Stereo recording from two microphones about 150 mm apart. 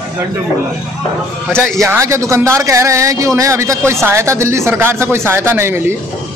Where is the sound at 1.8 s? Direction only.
20° right (ahead or behind).